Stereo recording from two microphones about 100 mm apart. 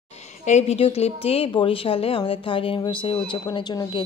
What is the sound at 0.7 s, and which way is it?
Speech, 80° left.